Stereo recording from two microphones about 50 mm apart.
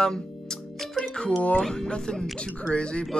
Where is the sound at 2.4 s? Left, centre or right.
Left.